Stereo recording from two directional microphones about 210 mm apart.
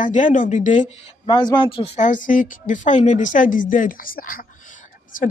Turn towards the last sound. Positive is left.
turn(degrees=40)  # may be behind; listen again after turning